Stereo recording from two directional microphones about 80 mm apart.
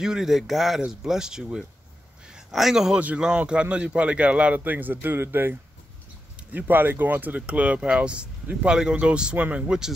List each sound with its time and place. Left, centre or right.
0.0 s speech: centre
2.2 s a sound: centre
3.0 s speech: centre